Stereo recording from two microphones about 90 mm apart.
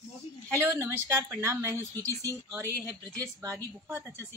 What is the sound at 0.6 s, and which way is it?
A woman's voice, 30° right (ahead or behind).